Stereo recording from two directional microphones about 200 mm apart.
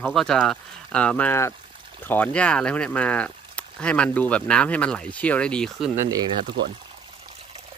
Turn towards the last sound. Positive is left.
turn(degrees=-20)  # may be behind; listen again after turning